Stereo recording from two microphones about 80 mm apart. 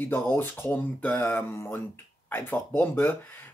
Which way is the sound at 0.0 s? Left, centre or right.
Left.